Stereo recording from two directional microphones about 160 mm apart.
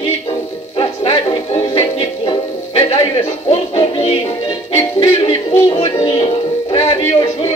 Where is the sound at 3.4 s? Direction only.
35° left (ahead or behind).